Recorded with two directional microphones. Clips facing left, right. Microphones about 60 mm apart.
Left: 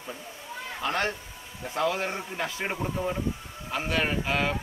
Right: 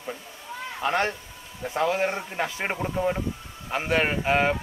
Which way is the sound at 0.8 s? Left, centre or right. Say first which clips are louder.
Right 4 dB; right.